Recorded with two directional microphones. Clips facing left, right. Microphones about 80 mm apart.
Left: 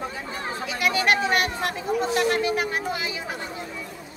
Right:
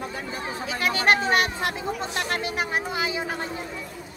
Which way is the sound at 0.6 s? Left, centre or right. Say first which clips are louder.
Right 1 dB; right.